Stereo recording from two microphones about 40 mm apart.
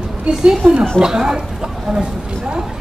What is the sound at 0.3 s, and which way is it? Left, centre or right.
Speech, centre.